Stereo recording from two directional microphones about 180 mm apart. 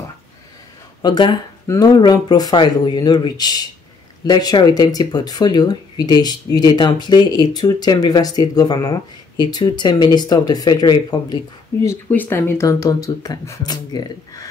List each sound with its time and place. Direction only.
1.0 s speech: 25° left (ahead or behind)